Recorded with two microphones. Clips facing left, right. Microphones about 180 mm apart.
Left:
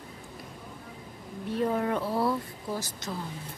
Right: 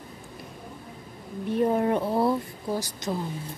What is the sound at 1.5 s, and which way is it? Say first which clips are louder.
Speech: right 4 dB; 20° right (ahead or behind).